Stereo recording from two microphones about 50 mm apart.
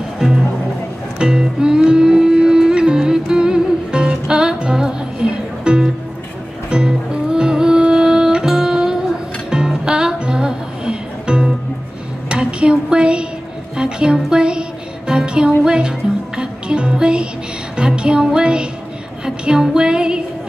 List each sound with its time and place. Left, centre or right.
0.2 s music: centre
12.3 s a sound: right
13.7 s music: centre